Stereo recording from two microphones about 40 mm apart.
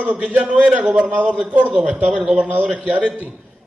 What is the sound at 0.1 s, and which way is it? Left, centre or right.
A man's voice, right.